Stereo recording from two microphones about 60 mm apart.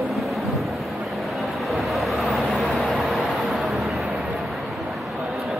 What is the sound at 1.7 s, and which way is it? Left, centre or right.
Vehicle, centre.